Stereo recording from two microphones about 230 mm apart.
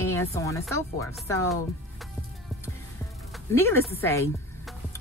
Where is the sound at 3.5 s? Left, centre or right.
Centre.